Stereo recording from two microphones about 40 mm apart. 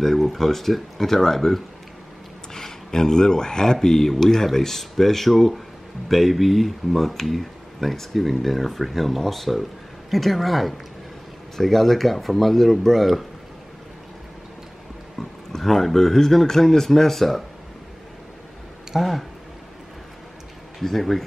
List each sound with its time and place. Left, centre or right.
0.0 s speech: centre
15.1 s speech: centre
18.9 s speech: centre
20.8 s speech: centre